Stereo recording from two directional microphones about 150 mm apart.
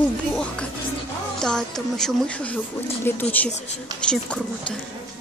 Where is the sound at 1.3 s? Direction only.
5° left (ahead or behind).